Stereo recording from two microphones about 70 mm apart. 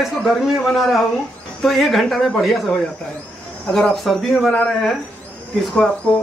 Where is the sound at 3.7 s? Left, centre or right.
Centre.